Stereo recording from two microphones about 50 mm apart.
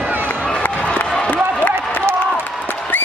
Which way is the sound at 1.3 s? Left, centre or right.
Left.